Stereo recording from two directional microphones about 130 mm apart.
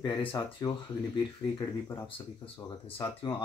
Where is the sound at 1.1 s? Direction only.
25° left (ahead or behind).